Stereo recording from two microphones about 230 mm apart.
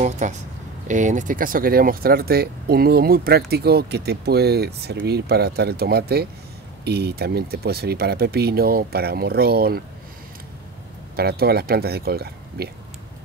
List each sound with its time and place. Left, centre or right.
0.0 s speech: right
11.1 s speech: right